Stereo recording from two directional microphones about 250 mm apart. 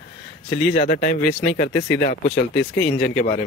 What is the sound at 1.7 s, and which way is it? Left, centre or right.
Speech, left.